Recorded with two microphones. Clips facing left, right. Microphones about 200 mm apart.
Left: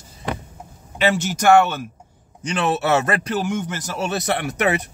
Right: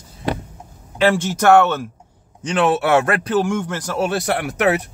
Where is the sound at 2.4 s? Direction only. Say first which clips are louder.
Right 3 dB; 90° right.